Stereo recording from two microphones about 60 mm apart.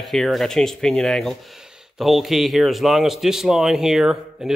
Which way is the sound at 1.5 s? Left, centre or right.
Centre.